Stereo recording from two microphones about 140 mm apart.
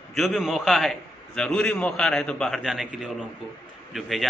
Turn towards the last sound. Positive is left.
turn(degrees=0)  # may be behind; listen again after turning